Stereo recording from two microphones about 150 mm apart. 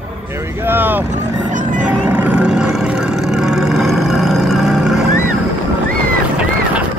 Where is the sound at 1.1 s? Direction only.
60° right (ahead or behind).